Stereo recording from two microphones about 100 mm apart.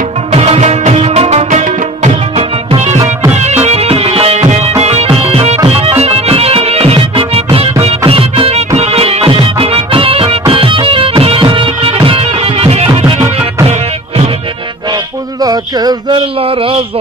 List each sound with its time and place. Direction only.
0.3 s music: 90° right
2.3 s music: 70° right (ahead or behind)
3.5 s music: 90° right; by 10.4 s 70° right (ahead or behind)
10.5 s music: 60° right (ahead or behind)
13.7 s music: 90° right
15.4 s a sound: 40° right (ahead or behind)
16.2 s a sound: 70° right (ahead or behind)